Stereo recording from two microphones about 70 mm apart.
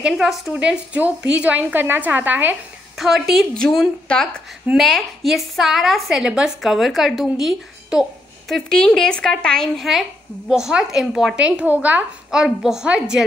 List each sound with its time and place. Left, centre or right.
0.0 s a woman's voice: centre; by 2.5 s right
3.0 s a woman's voice: centre
4.7 s a woman's voice: centre
8.6 s a woman's voice: centre
10.5 s a woman's voice: centre
11.3 s a woman's voice: centre
12.3 s a woman's voice: centre